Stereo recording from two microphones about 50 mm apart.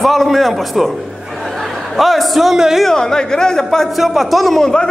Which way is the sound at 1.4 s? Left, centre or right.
Centre.